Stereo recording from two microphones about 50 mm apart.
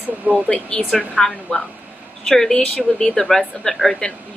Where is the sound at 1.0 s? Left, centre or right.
Left.